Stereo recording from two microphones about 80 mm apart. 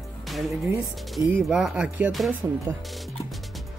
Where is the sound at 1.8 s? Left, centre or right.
Centre.